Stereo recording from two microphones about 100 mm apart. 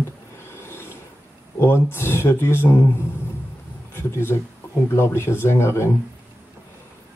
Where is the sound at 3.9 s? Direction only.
25° left (ahead or behind).